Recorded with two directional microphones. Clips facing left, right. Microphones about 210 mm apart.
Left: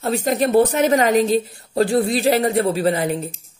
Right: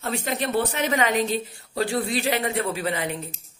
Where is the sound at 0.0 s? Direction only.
40° left (ahead or behind).